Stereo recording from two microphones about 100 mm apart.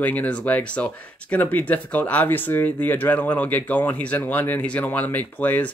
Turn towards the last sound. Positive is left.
turn(degrees=15)  # may be behind; listen again after turning